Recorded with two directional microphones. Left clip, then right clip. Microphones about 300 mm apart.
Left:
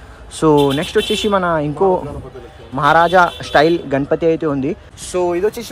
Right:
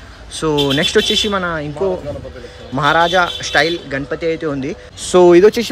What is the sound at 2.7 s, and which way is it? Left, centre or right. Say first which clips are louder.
Speech: left 2 dB; centre.